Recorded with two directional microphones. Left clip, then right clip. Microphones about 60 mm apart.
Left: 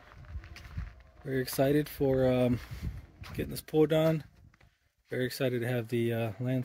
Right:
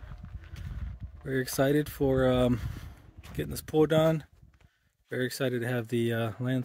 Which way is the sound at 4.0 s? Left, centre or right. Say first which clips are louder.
Right 3 dB; right.